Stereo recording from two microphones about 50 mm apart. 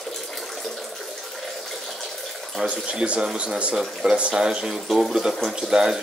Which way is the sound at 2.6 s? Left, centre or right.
Centre.